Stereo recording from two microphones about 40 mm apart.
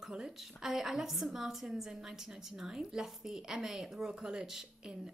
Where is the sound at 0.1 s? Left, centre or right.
Right.